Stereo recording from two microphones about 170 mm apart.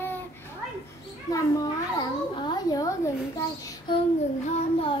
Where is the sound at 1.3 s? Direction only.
20° left (ahead or behind).